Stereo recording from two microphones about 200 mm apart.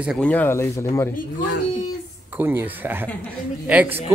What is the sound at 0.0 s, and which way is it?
Speech, centre (ahead or behind).